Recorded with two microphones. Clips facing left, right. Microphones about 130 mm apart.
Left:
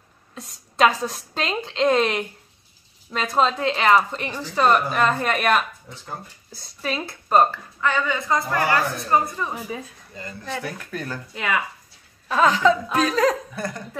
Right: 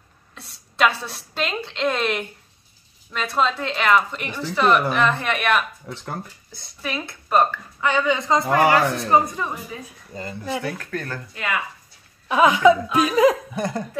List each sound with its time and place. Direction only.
0.3 s a woman's voice: 40° left (ahead or behind)
6.8 s a woman's voice: 30° left (ahead or behind)
7.8 s a man's voice: 15° right (ahead or behind)
10.6 s speech: 10° left (ahead or behind)
12.3 s speech: 10° right (ahead or behind)